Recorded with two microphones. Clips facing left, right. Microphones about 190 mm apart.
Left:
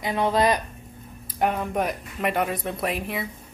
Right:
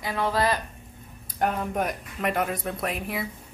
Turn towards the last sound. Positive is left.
turn(degrees=0)  # may be behind; listen again after turning